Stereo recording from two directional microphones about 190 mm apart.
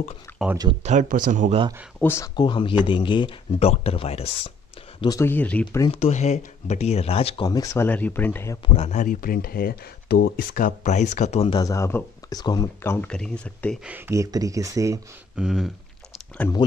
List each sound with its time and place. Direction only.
0.4 s speech: centre (ahead or behind)
0.8 s speech: 40° right (ahead or behind)
2.0 s speech: 15° left (ahead or behind); by 4.3 s 30° left (ahead or behind)
5.0 s speech: 15° left (ahead or behind)
5.8 s speech: 30° left (ahead or behind); by 8.5 s 10° left (ahead or behind)
8.6 s speech: 35° left (ahead or behind)
11.6 s speech: 15° left (ahead or behind)
13.8 s speech: 10° right (ahead or behind)
15.3 s speech: 5° right (ahead or behind)